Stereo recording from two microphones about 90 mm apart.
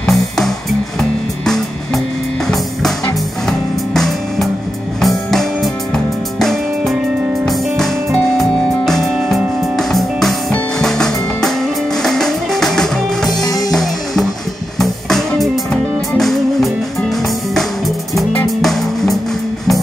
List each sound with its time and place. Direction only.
0.0 s music: 5° left (ahead or behind)
3.4 s music: 5° left (ahead or behind)
13.4 s music: 40° left (ahead or behind)
13.7 s music: centre (ahead or behind)
18.6 s music: 5° left (ahead or behind)